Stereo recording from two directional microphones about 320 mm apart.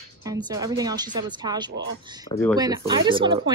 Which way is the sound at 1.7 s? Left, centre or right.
Right.